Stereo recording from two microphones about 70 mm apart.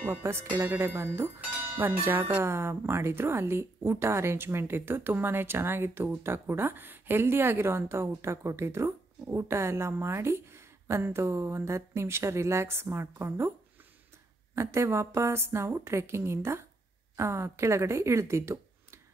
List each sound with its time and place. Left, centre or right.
0.2 s a woman's voice: right
14.5 s a woman's voice: right